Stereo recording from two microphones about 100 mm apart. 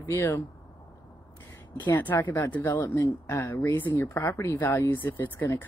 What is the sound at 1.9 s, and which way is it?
Speech, 20° left (ahead or behind).